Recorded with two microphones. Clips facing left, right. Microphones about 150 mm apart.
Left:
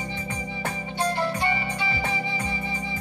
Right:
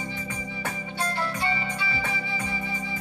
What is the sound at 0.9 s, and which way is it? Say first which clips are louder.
Music: left 5 dB; 20° left (ahead or behind).